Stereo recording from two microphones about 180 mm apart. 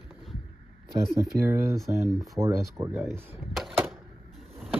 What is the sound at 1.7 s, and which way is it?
Speech, centre (ahead or behind).